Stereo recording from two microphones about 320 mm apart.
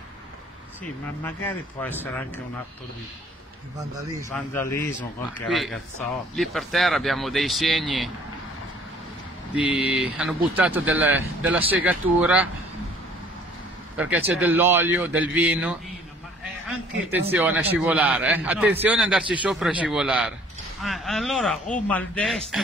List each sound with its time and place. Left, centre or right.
1.2 s a man's voice: centre
3.7 s speech: centre
4.3 s a man's voice: centre
9.6 s a man's voice: centre
13.9 s a man's voice: centre
17.3 s a man's voice: centre